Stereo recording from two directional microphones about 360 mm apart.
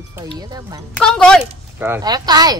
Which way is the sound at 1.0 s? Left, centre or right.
Centre.